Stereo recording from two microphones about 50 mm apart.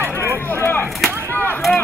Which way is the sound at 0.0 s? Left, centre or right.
Right.